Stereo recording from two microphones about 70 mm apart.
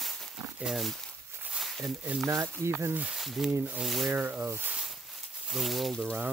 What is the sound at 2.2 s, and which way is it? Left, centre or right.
Speech, right.